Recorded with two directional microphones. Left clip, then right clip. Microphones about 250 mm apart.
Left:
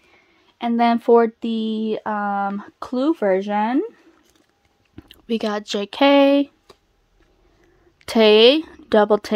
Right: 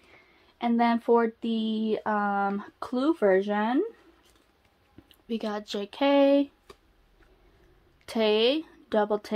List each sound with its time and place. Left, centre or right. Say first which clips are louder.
0.6 s speech: left 7 dB; left
4.9 s speech: left 10 dB; left
8.0 s speech: left 12 dB; left